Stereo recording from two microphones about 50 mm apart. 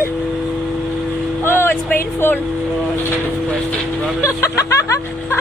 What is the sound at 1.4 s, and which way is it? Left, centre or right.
Speech, left.